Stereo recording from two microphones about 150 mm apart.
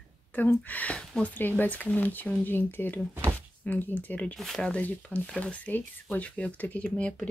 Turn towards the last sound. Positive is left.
turn(degrees=10)  # may be behind; listen again after turning